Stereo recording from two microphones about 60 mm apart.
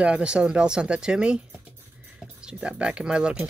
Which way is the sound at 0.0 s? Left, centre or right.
Centre.